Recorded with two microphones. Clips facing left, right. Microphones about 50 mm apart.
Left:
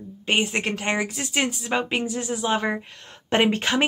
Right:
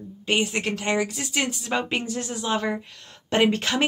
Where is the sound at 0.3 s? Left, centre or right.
Left.